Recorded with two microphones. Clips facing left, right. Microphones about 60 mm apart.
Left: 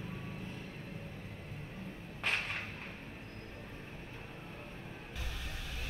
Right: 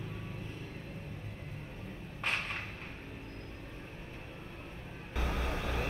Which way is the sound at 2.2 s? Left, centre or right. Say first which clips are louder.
Even; right.